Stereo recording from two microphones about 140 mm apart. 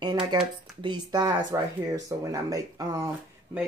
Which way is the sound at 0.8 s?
30° right (ahead or behind).